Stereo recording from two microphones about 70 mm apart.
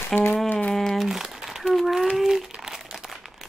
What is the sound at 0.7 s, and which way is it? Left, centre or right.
Crumpling, centre.